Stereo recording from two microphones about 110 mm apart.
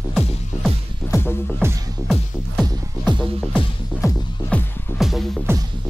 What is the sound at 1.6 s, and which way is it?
Music, 25° right (ahead or behind).